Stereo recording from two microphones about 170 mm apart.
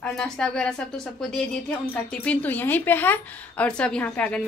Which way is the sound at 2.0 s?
10° left (ahead or behind).